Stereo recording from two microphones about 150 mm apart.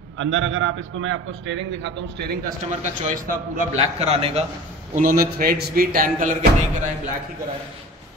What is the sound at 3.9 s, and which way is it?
Speech, 40° right (ahead or behind).